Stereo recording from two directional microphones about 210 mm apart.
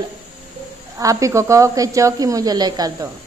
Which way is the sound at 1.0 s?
15° right (ahead or behind).